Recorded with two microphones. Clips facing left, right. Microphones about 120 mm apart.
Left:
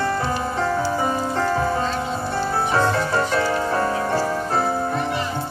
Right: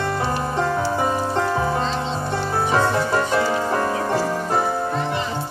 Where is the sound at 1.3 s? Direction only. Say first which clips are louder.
Even; 15° right (ahead or behind).